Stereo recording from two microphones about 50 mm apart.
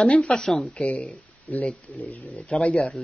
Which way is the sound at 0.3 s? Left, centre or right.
Centre.